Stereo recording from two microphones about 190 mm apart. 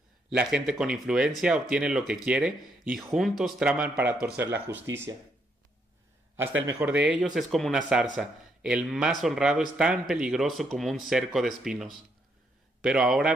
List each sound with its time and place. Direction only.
0.3 s speech: 5° right (ahead or behind)
6.7 s speech: 10° right (ahead or behind)